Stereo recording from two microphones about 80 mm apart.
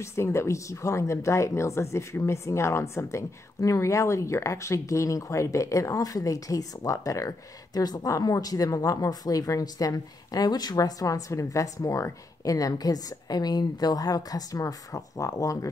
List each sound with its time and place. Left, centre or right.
0.0 s speech: left